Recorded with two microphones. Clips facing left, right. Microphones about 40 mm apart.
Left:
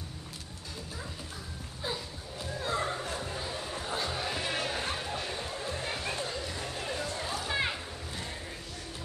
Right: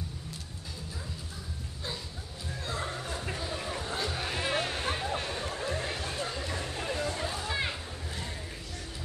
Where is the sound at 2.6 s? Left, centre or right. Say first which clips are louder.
Left 3 dB; centre.